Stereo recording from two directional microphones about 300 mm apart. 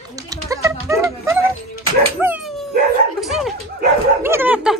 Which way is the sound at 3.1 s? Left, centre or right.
Centre.